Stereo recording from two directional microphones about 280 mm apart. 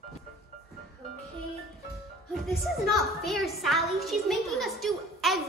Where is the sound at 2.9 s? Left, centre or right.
Centre.